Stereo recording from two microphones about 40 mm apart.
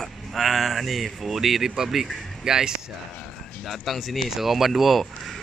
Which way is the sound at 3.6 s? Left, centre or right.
Centre.